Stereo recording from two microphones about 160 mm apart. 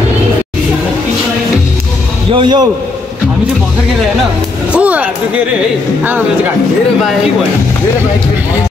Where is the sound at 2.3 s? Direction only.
30° right (ahead or behind).